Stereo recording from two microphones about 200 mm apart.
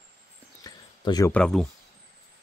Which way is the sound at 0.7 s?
20° left (ahead or behind).